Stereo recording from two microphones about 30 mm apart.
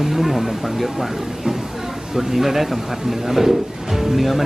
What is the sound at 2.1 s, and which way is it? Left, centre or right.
Speech, centre.